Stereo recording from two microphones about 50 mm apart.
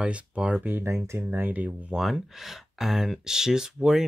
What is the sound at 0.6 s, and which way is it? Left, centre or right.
Speech, right.